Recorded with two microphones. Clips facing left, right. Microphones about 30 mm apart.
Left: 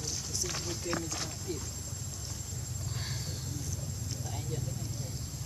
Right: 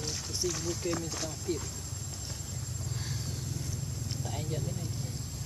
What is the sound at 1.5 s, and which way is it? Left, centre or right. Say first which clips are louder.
Speech: right 6 dB; centre.